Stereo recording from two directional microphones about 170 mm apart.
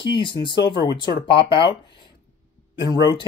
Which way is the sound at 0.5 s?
90° left.